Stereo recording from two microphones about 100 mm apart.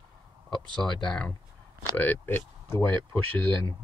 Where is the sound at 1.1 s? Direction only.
10° left (ahead or behind).